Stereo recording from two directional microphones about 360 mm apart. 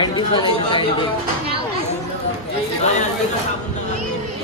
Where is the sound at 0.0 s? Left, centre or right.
Centre.